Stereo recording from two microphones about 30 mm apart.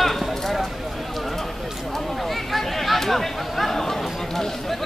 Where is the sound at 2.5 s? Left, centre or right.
Centre.